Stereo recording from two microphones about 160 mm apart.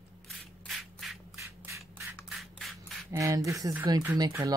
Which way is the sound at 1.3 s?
20° right (ahead or behind).